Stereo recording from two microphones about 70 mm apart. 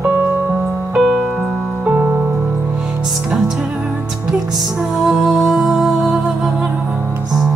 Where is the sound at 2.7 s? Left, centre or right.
Centre.